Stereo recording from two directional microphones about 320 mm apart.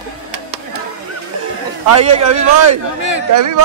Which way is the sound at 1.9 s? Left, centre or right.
Right.